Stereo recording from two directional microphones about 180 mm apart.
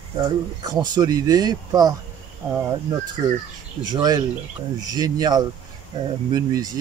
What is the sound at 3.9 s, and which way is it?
Speech, 25° right (ahead or behind).